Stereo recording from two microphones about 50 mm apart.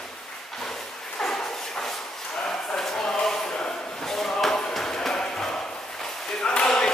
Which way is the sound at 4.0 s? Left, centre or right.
Centre.